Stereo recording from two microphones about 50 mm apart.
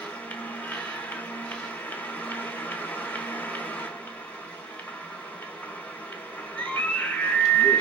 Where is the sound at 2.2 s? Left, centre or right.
Left.